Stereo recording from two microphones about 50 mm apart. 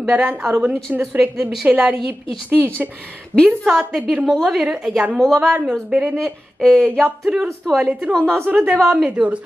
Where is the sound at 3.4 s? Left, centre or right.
Centre.